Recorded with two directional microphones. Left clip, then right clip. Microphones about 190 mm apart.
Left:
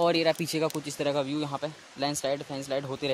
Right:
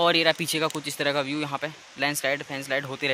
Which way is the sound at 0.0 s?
5° left (ahead or behind).